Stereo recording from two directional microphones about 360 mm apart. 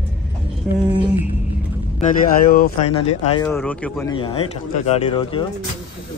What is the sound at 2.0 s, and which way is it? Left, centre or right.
Speech, left.